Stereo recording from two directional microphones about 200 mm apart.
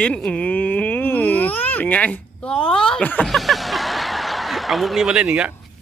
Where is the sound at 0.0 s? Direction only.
5° left (ahead or behind).